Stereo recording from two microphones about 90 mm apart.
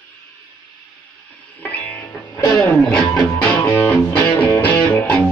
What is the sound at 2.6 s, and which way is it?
Music, 10° left (ahead or behind).